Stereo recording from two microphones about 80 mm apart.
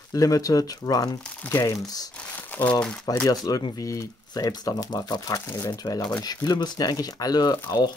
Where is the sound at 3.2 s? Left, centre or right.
Left.